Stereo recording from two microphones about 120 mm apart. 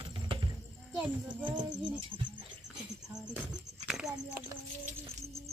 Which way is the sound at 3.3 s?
5° right (ahead or behind).